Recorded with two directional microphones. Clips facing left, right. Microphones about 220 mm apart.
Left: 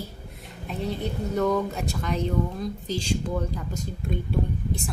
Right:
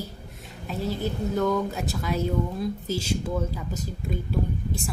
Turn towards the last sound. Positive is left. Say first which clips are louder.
# even
turn(degrees=0)  # may be behind; listen again after turning